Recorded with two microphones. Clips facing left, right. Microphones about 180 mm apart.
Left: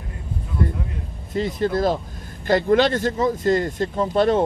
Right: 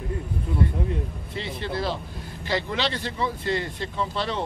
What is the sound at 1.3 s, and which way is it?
Speech, 45° left (ahead or behind).